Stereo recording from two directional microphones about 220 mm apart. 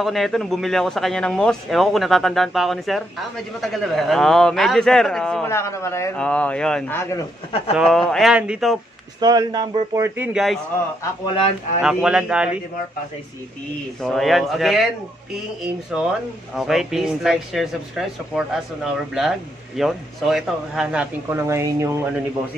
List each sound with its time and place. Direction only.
0.0 s speech: centre (ahead or behind)
9.2 s speech: 20° right (ahead or behind); by 10.6 s centre (ahead or behind)
11.8 s speech: 5° right (ahead or behind)
14.0 s speech: centre (ahead or behind)
15.9 s speech: 5° right (ahead or behind)
19.8 s speech: centre (ahead or behind)